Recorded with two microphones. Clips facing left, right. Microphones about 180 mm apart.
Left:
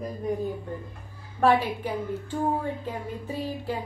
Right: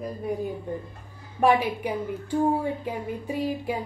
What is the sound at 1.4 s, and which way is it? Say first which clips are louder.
Speech: right 1 dB; 15° right (ahead or behind).